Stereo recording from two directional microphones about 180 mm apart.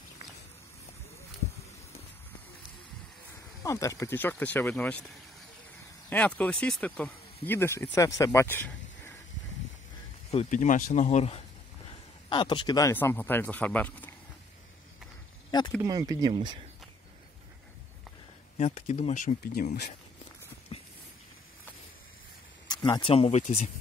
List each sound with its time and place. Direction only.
3.6 s speech: 15° left (ahead or behind)
6.0 s speech: 10° left (ahead or behind)
10.3 s speech: 45° left (ahead or behind)
11.9 s speech: 25° left (ahead or behind); by 14.1 s 10° left (ahead or behind)
15.8 s speech: 20° right (ahead or behind)
18.6 s speech: 40° left (ahead or behind)
20.7 s a sound: 30° left (ahead or behind)
22.7 s speech: 25° left (ahead or behind)